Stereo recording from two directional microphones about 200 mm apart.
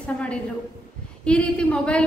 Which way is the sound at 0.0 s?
5° left (ahead or behind).